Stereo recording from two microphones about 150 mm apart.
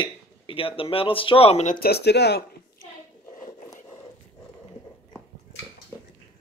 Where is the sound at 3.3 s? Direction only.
55° left (ahead or behind).